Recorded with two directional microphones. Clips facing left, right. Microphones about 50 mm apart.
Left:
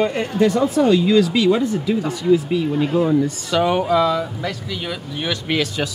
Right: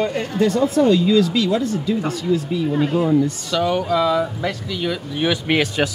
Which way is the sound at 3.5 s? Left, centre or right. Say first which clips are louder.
Left 5 dB; centre.